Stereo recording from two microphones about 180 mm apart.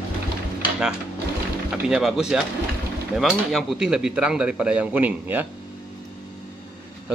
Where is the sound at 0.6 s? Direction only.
5° right (ahead or behind).